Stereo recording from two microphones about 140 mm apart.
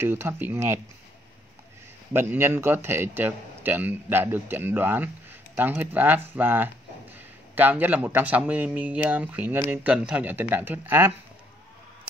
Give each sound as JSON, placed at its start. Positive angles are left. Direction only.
{"t": 0.0, "sound": "a man's voice", "side_deg": -15}
{"t": 2.1, "sound": "a man's voice", "side_deg": -15}